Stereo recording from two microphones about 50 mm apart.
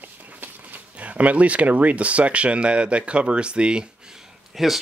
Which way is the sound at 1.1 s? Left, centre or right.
Right.